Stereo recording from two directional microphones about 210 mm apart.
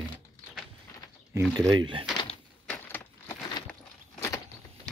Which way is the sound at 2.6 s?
10° left (ahead or behind).